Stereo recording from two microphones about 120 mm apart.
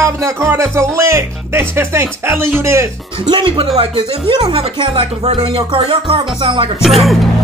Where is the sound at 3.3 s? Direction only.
45° right (ahead or behind).